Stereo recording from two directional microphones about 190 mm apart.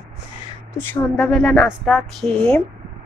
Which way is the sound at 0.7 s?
10° left (ahead or behind).